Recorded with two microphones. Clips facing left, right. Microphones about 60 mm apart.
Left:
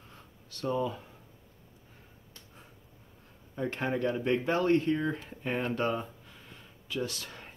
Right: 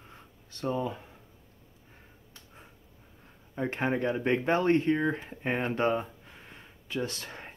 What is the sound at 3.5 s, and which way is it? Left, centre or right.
Speech, right.